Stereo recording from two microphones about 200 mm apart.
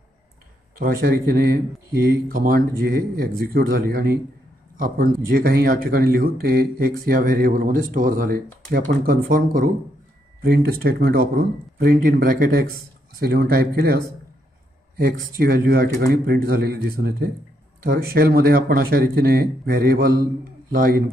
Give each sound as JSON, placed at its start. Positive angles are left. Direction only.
{"t": 0.7, "sound": "speech", "side_deg": -45}
{"t": 15.0, "sound": "speech", "side_deg": -50}